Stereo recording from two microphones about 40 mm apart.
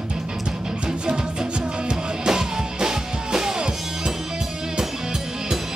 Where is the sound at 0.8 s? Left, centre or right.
Right.